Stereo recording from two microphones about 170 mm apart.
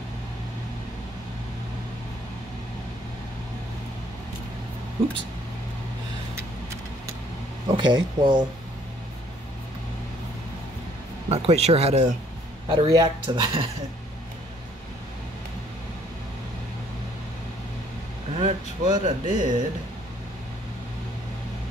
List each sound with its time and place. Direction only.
7.6 s speech: 25° right (ahead or behind)
11.2 s speech: 35° right (ahead or behind)
12.6 s speech: 25° right (ahead or behind)
18.4 s speech: 45° right (ahead or behind)